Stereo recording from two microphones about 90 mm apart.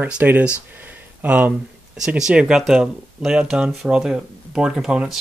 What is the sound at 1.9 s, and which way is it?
Speech, 5° right (ahead or behind).